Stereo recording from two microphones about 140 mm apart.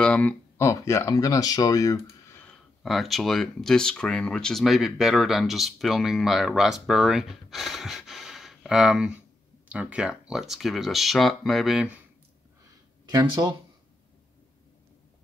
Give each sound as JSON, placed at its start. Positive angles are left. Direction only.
{"t": 0.0, "sound": "a sound", "side_deg": 10}
{"t": 0.7, "sound": "speech", "side_deg": 20}
{"t": 2.4, "sound": "speech", "side_deg": 0}
{"t": 13.1, "sound": "speech", "side_deg": -30}